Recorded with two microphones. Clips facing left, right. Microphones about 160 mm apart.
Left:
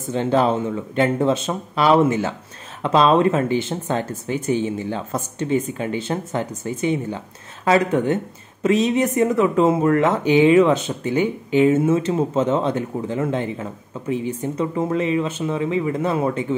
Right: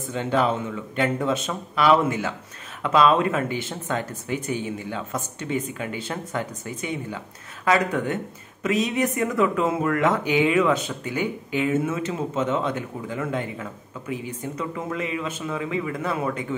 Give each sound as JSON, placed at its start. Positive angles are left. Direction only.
{"t": 0.1, "sound": "speech", "side_deg": 30}